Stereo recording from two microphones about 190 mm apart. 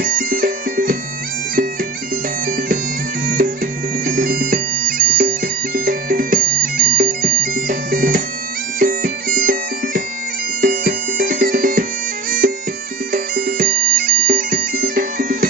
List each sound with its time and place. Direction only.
0.0 s music: 50° right (ahead or behind)
2.4 s bagpipes: 50° right (ahead or behind)
10.6 s music: 50° right (ahead or behind)
12.3 s bagpipes: 50° right (ahead or behind)